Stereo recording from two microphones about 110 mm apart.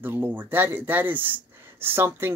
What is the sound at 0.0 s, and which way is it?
Speech, 20° right (ahead or behind).